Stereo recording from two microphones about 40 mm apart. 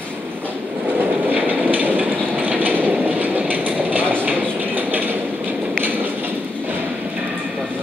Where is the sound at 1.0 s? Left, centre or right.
Right.